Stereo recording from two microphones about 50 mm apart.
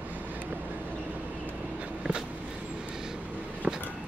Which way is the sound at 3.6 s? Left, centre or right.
Right.